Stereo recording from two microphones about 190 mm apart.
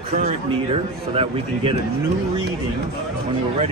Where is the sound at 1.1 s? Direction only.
30° right (ahead or behind).